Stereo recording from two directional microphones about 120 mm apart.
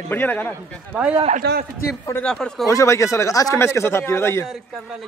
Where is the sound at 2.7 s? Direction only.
25° left (ahead or behind).